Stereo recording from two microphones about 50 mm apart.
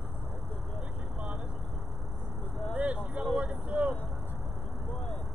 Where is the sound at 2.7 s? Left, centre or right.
Right.